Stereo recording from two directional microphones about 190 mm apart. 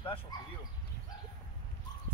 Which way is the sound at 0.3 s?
20° left (ahead or behind).